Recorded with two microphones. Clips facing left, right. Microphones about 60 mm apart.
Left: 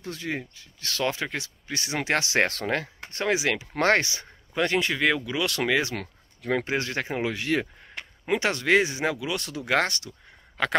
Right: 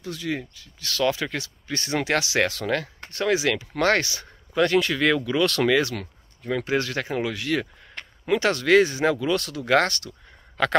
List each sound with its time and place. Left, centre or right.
0.0 s speech: left
2.1 s speech: left
2.6 s speech: left
5.0 s speech: centre
6.6 s speech: left
9.4 s speech: left